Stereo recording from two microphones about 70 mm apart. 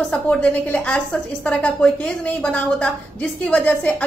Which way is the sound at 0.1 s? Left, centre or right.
Centre.